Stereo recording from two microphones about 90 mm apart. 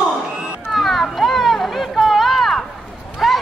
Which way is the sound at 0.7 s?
Centre (ahead or behind).